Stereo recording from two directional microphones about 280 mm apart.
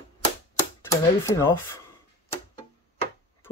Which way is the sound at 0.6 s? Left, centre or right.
Centre.